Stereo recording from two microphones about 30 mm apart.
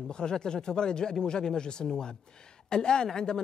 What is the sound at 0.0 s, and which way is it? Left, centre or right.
Speech, left.